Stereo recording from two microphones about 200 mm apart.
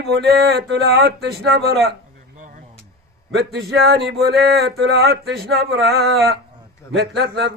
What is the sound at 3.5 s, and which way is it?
Speech, 55° right (ahead or behind).